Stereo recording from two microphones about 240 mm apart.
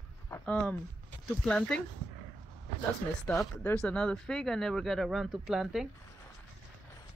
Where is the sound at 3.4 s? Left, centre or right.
Centre.